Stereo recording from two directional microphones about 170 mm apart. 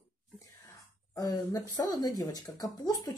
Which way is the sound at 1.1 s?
20° left (ahead or behind).